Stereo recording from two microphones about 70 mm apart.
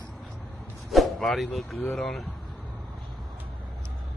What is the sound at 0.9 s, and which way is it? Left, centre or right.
Speech, centre.